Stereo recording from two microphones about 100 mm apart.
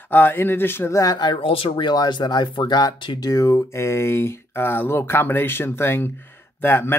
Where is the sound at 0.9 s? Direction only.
40° left (ahead or behind).